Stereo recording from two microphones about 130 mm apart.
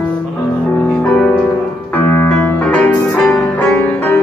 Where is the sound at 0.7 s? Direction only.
5° left (ahead or behind).